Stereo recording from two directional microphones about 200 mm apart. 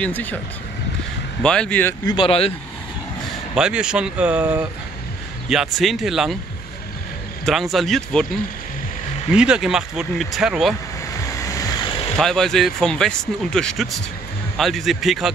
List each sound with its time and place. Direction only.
0.0 s speech: 10° left (ahead or behind)
1.4 s speech: 5° left (ahead or behind)
2.1 s speech: 30° left (ahead or behind)
3.5 s speech: 5° right (ahead or behind)
7.4 s speech: centre (ahead or behind)
9.3 s speech: 5° right (ahead or behind)
11.4 s vehicle: 20° left (ahead or behind)
12.2 s speech: centre (ahead or behind)